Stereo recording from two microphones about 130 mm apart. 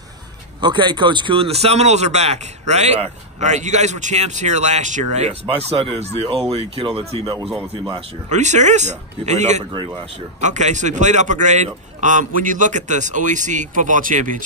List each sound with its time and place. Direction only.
0.6 s speech: 35° right (ahead or behind)
7.4 s speech: 5° right (ahead or behind)
8.3 s a man's voice: 65° right (ahead or behind); by 14.4 s 90° right